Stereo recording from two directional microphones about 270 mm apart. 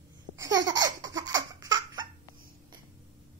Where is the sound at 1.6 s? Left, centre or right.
Centre.